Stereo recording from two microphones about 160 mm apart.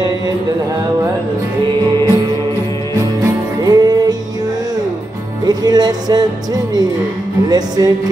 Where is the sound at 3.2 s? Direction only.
25° right (ahead or behind).